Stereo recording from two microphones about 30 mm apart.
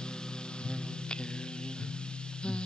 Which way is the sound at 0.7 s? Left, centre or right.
Left.